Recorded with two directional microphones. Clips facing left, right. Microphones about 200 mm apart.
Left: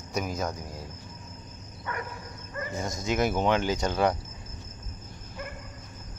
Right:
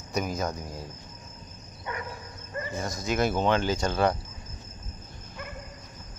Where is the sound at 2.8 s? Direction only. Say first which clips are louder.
Even; 20° left (ahead or behind).